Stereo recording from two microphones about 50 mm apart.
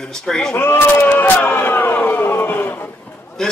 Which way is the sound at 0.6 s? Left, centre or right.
Left.